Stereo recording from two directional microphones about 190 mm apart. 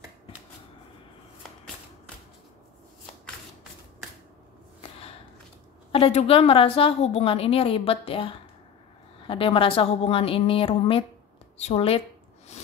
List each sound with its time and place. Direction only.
5.9 s a woman's voice: 30° left (ahead or behind)